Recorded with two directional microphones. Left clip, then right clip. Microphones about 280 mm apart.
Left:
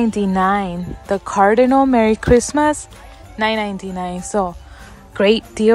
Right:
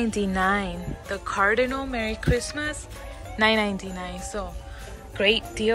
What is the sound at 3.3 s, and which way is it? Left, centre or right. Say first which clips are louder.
A woman's voice: left 3 dB; centre.